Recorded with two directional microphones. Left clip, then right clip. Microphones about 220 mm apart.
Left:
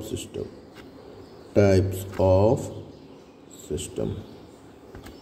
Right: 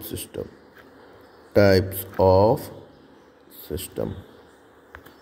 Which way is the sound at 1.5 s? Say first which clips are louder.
Right 3 dB; 20° right (ahead or behind).